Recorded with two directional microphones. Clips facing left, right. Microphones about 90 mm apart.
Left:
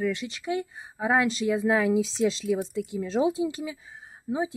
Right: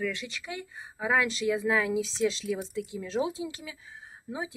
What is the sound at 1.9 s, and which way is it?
Speech, 40° left (ahead or behind).